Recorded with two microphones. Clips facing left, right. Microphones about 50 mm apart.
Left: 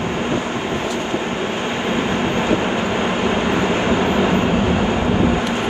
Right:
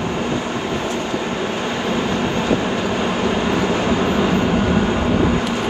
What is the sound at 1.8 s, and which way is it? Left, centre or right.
Vehicle, left.